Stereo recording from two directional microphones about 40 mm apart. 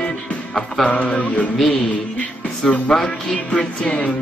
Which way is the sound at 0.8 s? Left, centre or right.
Left.